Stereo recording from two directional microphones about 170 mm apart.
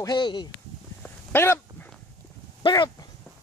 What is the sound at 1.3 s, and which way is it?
Speech, 15° left (ahead or behind).